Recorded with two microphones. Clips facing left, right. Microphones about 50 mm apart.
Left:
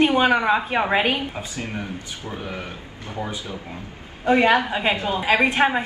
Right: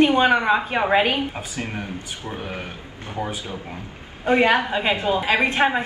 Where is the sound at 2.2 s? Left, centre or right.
Right.